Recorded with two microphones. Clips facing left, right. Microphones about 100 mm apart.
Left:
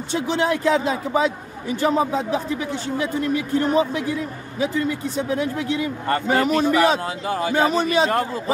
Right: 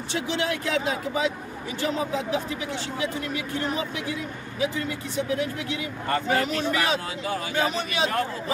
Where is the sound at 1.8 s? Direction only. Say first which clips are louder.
Left 7 dB; 40° left (ahead or behind).